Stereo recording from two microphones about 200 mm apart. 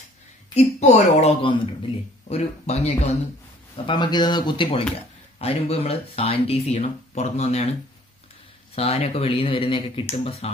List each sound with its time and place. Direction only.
0.6 s speech: 35° left (ahead or behind)
8.7 s speech: 30° left (ahead or behind)